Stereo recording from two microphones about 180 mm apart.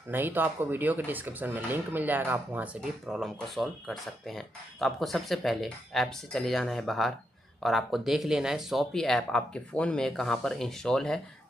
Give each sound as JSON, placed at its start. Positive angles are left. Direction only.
{"t": 0.1, "sound": "speech", "side_deg": -10}